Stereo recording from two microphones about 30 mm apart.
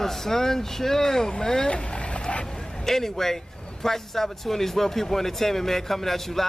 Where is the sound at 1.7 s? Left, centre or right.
Left.